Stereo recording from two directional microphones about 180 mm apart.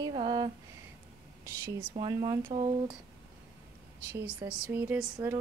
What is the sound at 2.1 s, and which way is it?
Speech, 20° right (ahead or behind).